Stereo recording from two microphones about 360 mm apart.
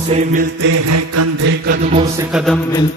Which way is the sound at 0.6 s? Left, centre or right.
Right.